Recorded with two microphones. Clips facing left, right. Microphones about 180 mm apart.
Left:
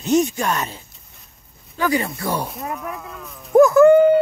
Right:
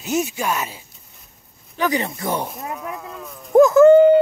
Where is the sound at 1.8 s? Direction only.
20° right (ahead or behind).